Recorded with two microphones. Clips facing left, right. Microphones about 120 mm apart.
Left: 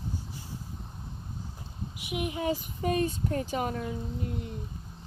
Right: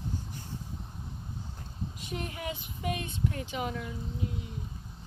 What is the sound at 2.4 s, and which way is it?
Speech, 35° left (ahead or behind).